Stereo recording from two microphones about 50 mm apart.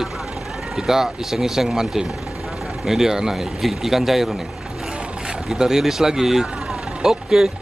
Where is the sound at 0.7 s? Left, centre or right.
Centre.